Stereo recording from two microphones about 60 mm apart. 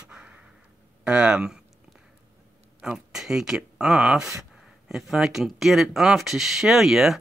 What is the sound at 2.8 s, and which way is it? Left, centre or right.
Speech, centre.